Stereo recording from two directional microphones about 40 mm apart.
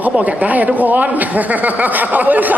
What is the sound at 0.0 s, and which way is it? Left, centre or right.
Speech, right.